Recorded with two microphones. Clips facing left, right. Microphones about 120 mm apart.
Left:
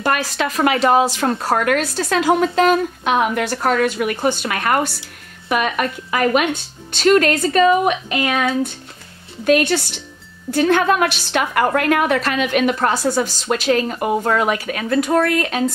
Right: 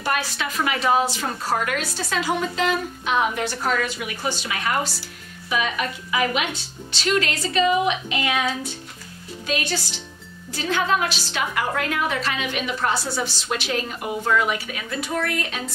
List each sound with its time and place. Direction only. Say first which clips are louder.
0.0 s a woman's voice: left 6 dB; 55° left (ahead or behind)
0.7 s a woman's voice: left 4 dB; 80° left; by 15.6 s 55° left (ahead or behind)